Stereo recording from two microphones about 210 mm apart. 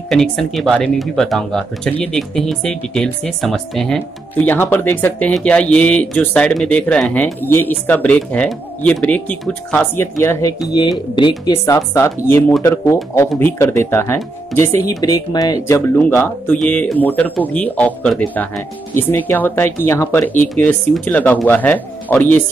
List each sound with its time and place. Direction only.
0.1 s speech: centre (ahead or behind)